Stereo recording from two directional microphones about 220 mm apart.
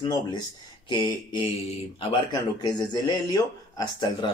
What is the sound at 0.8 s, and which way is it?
Speech, 20° left (ahead or behind).